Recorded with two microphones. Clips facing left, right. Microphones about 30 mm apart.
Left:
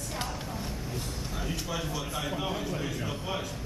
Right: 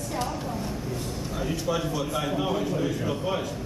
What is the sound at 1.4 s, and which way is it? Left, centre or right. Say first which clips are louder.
A man's voice: right 7 dB; centre.